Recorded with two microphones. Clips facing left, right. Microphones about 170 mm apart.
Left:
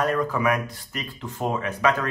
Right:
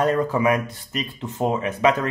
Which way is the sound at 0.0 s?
25° right (ahead or behind).